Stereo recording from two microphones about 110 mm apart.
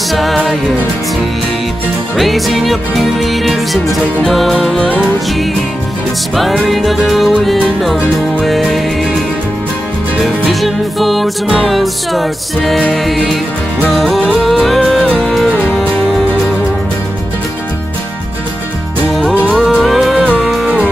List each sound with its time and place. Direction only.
0.1 s music: centre (ahead or behind)
2.1 s music: centre (ahead or behind)
6.3 s music: centre (ahead or behind)
10.2 s music: centre (ahead or behind)
19.5 s music: centre (ahead or behind)